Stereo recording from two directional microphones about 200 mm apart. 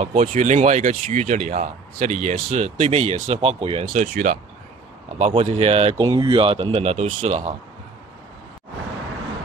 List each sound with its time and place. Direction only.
0.0 s speech: 35° right (ahead or behind)
3.8 s speech: 40° right (ahead or behind)
5.2 s speech: 30° right (ahead or behind)